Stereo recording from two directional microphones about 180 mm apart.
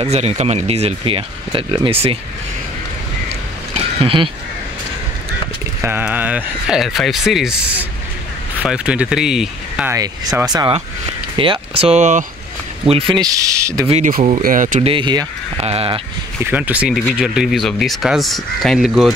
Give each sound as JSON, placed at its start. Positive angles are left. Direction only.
{"t": 0.0, "sound": "speech", "side_deg": -35}
{"t": 3.7, "sound": "a sound", "side_deg": -30}
{"t": 5.8, "sound": "speech", "side_deg": -10}
{"t": 9.8, "sound": "speech", "side_deg": -15}
{"t": 12.8, "sound": "speech", "side_deg": -30}
{"t": 13.8, "sound": "speech", "side_deg": -35}
{"t": 14.9, "sound": "speech", "side_deg": -25}
{"t": 16.4, "sound": "speech", "side_deg": -10}